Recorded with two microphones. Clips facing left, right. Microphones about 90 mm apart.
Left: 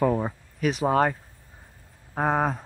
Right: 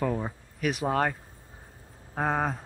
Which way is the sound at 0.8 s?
10° left (ahead or behind).